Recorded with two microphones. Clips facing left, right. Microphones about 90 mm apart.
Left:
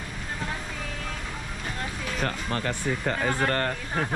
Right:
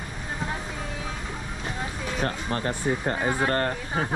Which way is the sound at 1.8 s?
5° right (ahead or behind).